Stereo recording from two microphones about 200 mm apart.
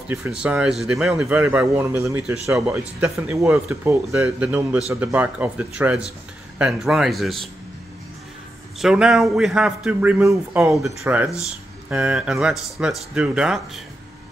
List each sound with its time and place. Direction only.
0.1 s a man's voice: 5° right (ahead or behind)
8.7 s a man's voice: 5° right (ahead or behind)